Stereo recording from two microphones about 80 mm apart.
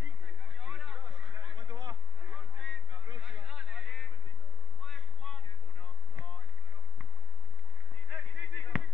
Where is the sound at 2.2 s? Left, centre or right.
Centre.